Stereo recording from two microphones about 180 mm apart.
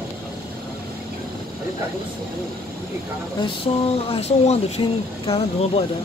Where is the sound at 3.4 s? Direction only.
30° left (ahead or behind).